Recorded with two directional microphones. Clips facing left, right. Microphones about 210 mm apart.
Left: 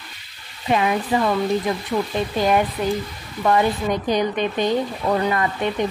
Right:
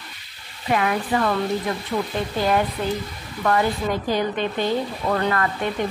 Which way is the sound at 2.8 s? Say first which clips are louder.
Left 3 dB; 15° left (ahead or behind).